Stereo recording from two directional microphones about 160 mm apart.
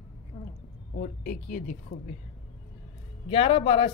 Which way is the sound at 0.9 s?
60° left (ahead or behind).